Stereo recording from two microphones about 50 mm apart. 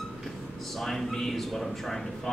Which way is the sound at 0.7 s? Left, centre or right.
Centre.